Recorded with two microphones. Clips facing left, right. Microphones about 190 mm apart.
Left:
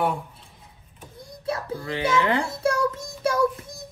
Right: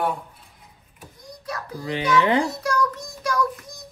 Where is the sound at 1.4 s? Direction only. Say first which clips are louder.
Left 5 dB; 30° left (ahead or behind).